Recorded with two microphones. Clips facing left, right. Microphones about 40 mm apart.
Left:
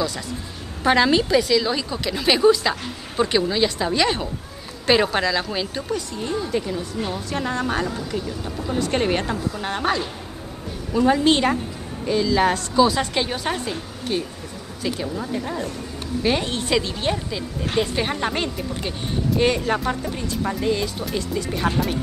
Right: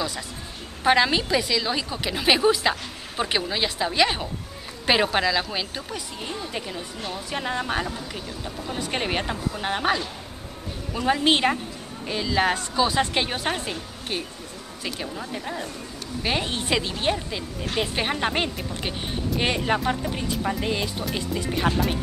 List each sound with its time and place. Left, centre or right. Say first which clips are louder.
0.8 s a woman's voice: left 3 dB; centre
15.1 s a woman's voice: left 5 dB; centre